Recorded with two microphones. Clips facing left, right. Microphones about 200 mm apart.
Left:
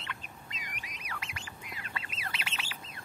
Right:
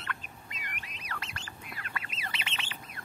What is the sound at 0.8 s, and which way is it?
Squawk, 10° left (ahead or behind).